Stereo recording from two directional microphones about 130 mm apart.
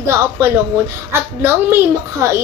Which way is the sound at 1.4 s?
15° right (ahead or behind).